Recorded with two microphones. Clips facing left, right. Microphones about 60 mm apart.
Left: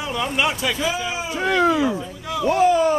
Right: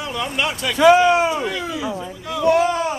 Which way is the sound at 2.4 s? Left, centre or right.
Right.